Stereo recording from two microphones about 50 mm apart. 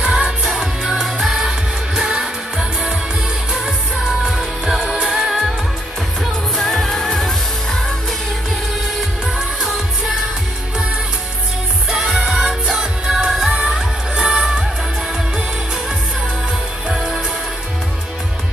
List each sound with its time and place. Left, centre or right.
0.0 s music: right
0.8 s music: centre
4.2 s music: centre
6.5 s music: centre
9.4 s singing: centre
11.9 s music: centre
16.9 s music: centre